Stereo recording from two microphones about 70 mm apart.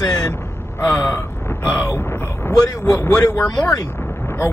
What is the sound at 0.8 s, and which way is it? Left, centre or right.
Speech, left.